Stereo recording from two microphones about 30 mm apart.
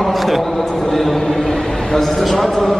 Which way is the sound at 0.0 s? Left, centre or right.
Centre.